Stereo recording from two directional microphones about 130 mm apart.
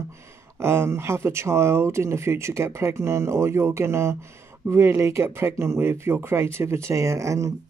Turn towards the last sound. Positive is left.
turn(degrees=-25)  # may be behind; listen again after turning